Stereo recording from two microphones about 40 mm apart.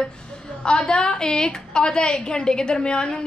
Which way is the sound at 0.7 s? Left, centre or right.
Left.